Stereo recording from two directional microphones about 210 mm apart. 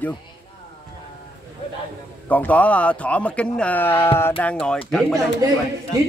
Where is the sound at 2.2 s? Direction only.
5° left (ahead or behind).